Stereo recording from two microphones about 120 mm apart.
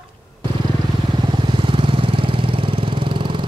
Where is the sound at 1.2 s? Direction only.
40° right (ahead or behind).